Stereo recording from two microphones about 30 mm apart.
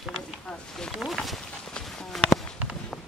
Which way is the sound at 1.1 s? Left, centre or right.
Centre.